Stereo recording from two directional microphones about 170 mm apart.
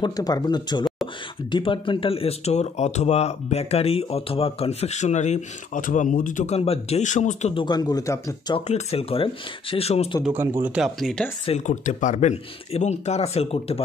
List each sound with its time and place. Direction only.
0.0 s speech: 20° left (ahead or behind); by 7.5 s 45° left (ahead or behind)
7.5 s speech: 25° left (ahead or behind)
8.5 s speech: 40° left (ahead or behind)
10.3 s speech: 15° right (ahead or behind)
11.4 s speech: 40° left (ahead or behind)